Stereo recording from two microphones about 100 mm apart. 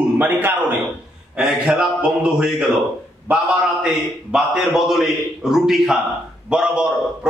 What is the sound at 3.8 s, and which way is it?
A man's voice, 5° right (ahead or behind).